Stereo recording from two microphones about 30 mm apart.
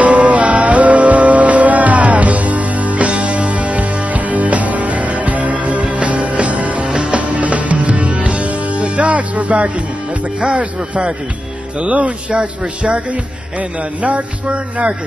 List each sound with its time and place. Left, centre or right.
0.0 s music: right
6.9 s music: right
7.2 s music: right
10.4 s speech: right
11.8 s speech: right
12.4 s speech: right
13.1 s speech: right